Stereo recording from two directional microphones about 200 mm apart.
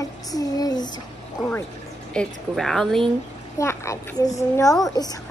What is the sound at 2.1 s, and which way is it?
Speech, centre (ahead or behind).